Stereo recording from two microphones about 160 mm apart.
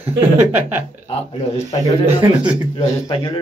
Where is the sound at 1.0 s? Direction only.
35° left (ahead or behind).